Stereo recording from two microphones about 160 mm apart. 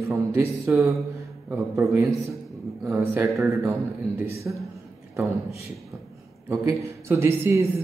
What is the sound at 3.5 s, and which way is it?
Speech, 20° right (ahead or behind).